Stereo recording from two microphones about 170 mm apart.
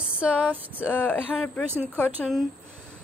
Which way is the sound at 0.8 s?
10° left (ahead or behind).